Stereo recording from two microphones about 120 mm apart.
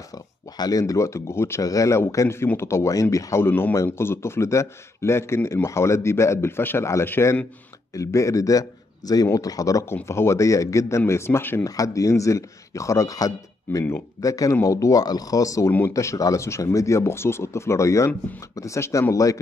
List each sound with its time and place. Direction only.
0.6 s speech: 30° left (ahead or behind)